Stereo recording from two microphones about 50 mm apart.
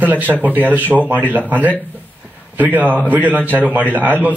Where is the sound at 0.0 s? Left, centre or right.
Right.